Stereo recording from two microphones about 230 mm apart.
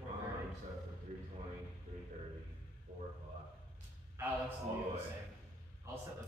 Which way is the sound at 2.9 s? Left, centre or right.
Centre.